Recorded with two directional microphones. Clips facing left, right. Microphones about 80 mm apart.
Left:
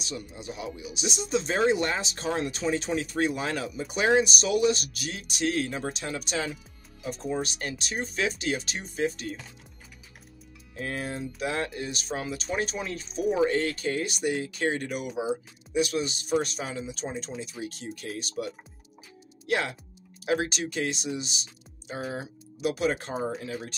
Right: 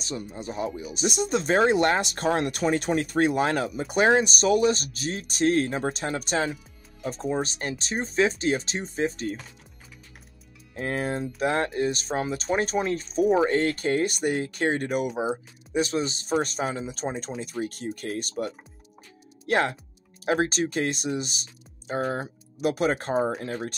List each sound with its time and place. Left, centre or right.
0.0 s speech: right
10.7 s speech: right